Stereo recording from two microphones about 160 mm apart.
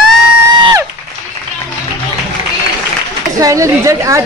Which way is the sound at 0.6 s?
30° right (ahead or behind).